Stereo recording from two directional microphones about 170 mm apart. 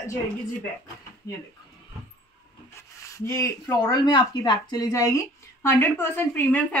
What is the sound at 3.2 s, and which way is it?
Speech, 20° left (ahead or behind).